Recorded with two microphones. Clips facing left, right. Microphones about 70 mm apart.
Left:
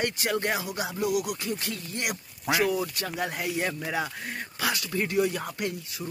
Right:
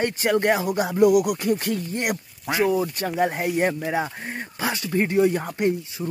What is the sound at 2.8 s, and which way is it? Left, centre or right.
Speech, right.